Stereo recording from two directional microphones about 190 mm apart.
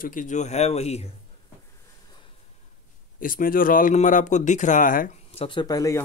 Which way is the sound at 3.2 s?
45° left (ahead or behind).